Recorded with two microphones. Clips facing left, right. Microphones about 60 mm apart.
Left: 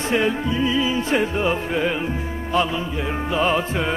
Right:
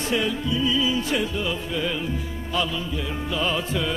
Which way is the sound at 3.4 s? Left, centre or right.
Left.